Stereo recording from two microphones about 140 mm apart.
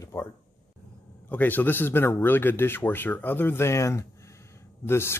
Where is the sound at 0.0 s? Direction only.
20° left (ahead or behind).